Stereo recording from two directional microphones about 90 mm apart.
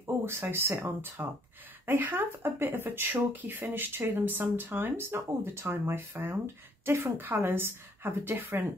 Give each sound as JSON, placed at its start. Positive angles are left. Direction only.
{"t": 0.0, "sound": "speech", "side_deg": -30}